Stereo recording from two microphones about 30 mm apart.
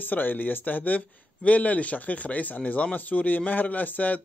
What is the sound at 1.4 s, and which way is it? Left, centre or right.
Speech, left.